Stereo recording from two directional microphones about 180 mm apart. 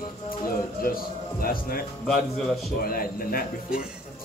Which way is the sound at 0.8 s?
55° left (ahead or behind).